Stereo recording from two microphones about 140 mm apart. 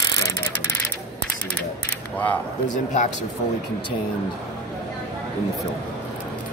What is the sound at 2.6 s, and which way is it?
Speech, 65° left (ahead or behind).